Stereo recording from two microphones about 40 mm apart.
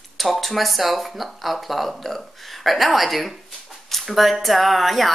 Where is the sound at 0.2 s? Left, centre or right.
Centre.